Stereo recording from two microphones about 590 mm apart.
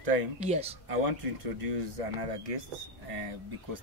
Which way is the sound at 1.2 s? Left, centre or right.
Right.